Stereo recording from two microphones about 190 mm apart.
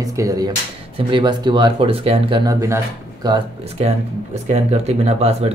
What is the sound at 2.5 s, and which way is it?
Speech, 15° right (ahead or behind).